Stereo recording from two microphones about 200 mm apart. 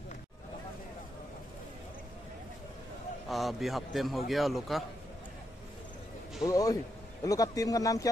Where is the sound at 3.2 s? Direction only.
Centre (ahead or behind).